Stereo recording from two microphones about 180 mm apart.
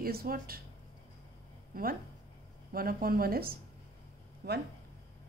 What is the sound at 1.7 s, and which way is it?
Speech, 55° right (ahead or behind).